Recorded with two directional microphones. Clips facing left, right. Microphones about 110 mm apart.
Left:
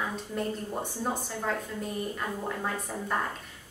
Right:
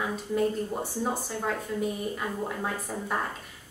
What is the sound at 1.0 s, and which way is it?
A woman's voice, 5° right (ahead or behind).